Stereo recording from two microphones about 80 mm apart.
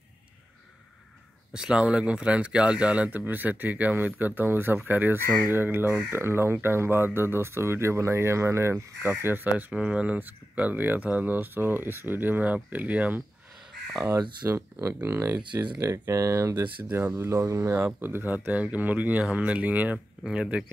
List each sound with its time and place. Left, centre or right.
1.5 s speech: centre; by 8.9 s right
9.2 s speech: right
14.5 s speech: right
15.3 s speech: right
15.8 s speech: right
17.8 s speech: right